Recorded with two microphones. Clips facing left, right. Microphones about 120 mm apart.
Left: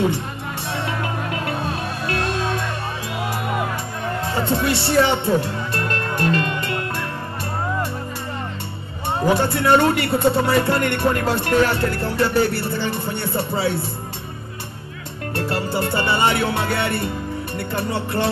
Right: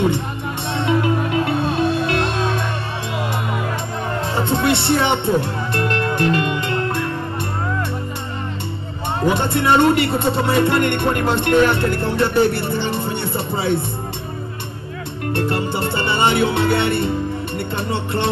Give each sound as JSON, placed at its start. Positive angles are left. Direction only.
{"t": 2.0, "sound": "music", "side_deg": -25}
{"t": 4.7, "sound": "speech", "side_deg": -20}
{"t": 5.2, "sound": "music", "side_deg": -20}
{"t": 9.2, "sound": "speech", "side_deg": -25}
{"t": 15.3, "sound": "speech", "side_deg": -20}